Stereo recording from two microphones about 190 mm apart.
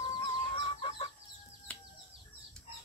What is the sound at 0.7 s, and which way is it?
Chicken, 25° left (ahead or behind).